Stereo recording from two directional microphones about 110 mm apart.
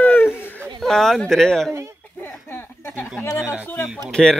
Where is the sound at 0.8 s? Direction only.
5° left (ahead or behind).